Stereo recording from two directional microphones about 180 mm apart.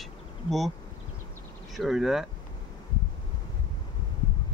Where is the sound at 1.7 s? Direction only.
Centre (ahead or behind).